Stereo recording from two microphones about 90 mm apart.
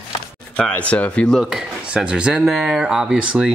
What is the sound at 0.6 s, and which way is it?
Speech, 15° left (ahead or behind).